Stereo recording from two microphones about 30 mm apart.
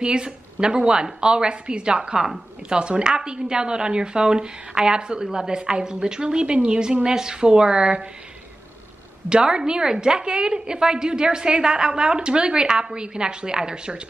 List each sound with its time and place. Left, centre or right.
0.0 s a woman's voice: right
9.3 s a woman's voice: right